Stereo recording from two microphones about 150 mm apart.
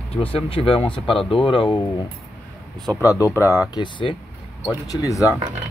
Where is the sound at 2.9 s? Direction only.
20° left (ahead or behind).